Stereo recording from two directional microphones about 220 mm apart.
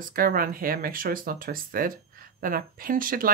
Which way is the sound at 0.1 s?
40° right (ahead or behind).